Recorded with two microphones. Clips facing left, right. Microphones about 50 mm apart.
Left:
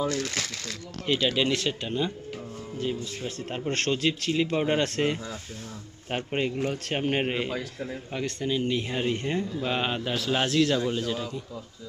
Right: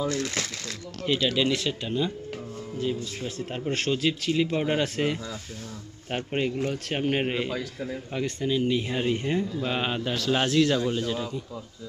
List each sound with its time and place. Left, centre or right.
0.1 s speech: right
1.2 s speech: left
3.7 s a man's voice: centre
4.8 s a man's voice: centre
6.0 s a man's voice: centre